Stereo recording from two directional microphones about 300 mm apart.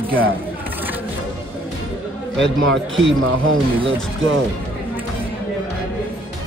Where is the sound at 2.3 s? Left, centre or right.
Right.